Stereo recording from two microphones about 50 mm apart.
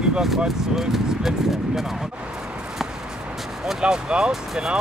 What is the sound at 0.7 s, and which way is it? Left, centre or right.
Speech, centre.